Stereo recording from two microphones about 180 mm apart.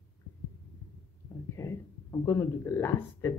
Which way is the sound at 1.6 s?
15° left (ahead or behind).